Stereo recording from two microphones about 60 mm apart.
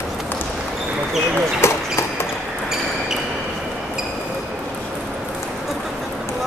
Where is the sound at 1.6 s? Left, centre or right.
Left.